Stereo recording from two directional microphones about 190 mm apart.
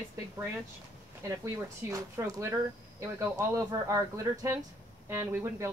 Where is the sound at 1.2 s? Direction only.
15° right (ahead or behind).